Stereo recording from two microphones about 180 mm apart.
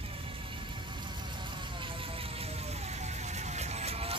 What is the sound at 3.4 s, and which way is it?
Music, 40° right (ahead or behind).